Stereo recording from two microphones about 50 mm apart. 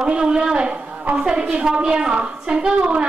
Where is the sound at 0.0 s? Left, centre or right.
Centre.